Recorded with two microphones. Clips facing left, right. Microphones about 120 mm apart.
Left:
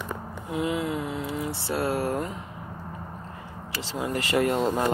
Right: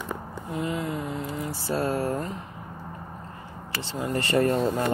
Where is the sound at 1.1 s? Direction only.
85° left.